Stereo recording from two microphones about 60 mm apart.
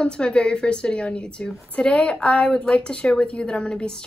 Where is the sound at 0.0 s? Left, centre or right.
Centre.